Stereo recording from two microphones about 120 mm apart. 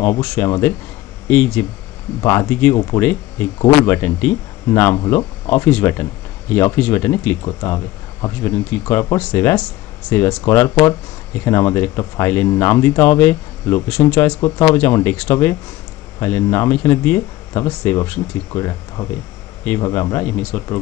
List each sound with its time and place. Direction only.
0.2 s speech: 10° left (ahead or behind)
7.4 s speech: 30° left (ahead or behind); by 14.4 s 10° left (ahead or behind)
14.4 s speech: 30° left (ahead or behind)
18.5 s speech: 30° left (ahead or behind)